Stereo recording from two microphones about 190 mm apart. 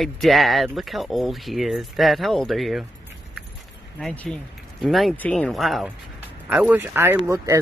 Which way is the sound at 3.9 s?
5° left (ahead or behind).